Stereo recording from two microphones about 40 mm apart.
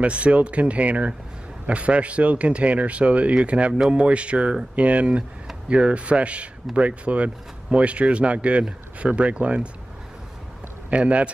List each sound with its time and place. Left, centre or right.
0.0 s a man's voice: right
10.9 s speech: right